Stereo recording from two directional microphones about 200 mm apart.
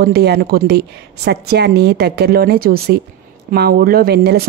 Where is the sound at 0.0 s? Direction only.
55° right (ahead or behind).